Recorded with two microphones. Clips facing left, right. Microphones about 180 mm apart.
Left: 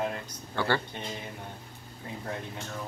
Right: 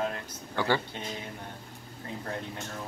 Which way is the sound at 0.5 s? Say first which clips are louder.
Right 1 dB; 15° right (ahead or behind).